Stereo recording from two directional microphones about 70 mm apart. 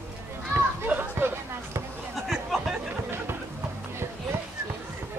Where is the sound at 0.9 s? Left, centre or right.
Right.